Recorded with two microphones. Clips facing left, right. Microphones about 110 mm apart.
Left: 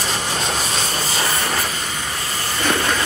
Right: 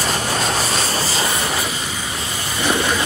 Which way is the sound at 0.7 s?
35° right (ahead or behind).